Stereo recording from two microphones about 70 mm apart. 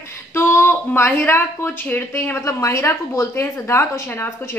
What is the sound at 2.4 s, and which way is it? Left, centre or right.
A woman's voice, left.